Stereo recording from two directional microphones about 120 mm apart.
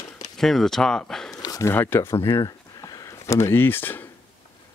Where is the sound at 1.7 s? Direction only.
20° left (ahead or behind).